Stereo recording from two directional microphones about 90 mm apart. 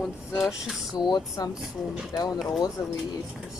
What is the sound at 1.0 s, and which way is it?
Speech, 45° left (ahead or behind).